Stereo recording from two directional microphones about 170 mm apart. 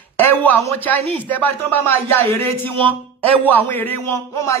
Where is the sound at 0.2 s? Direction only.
10° left (ahead or behind).